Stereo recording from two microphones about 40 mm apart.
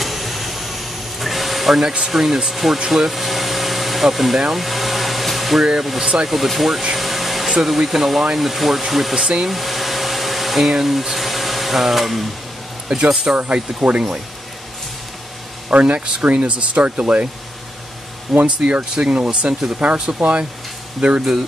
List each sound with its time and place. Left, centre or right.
0.0 s a sound: centre
1.8 s speech: centre
2.9 s vacuum cleaner: centre
4.5 s hair dryer: centre
5.9 s speech: centre
7.0 s vacuum cleaner: centre
7.6 s speech: centre
9.2 s speech: centre
9.5 s a sound: centre
12.8 s speech: right
15.7 s speech: right
18.3 s speech: centre
19.2 s speech: right